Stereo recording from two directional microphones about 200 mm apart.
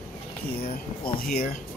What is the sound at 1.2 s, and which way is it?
Speech, 45° left (ahead or behind).